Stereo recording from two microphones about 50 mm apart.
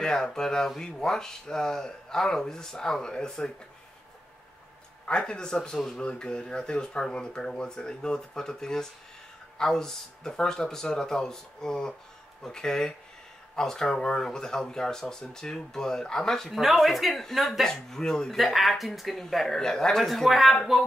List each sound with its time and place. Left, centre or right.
0.0 s speech: centre
5.0 s speech: centre
16.5 s speech: centre
18.3 s speech: centre